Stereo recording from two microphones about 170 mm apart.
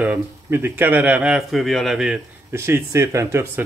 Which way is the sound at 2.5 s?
15° right (ahead or behind).